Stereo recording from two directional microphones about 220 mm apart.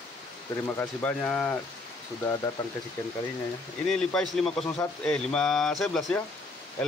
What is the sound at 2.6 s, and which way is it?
Speech, 20° left (ahead or behind).